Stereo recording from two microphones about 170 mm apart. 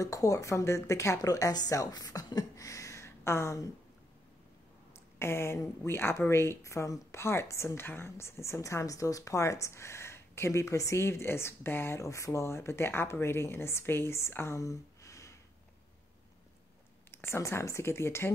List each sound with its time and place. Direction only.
0.0 s a woman's voice: 20° left (ahead or behind)
5.2 s speech: 15° left (ahead or behind)
17.1 s speech: 15° left (ahead or behind)